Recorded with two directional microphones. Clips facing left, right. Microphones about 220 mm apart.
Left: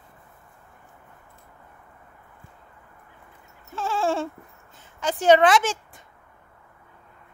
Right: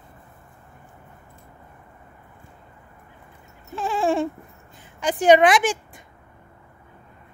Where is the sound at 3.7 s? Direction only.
15° right (ahead or behind).